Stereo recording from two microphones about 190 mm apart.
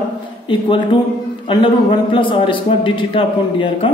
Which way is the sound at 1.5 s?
25° left (ahead or behind).